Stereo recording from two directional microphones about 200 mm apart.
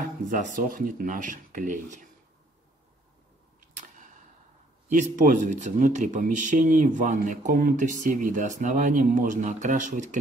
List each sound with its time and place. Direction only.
0.3 s speech: 40° right (ahead or behind)
4.8 s speech: 40° right (ahead or behind)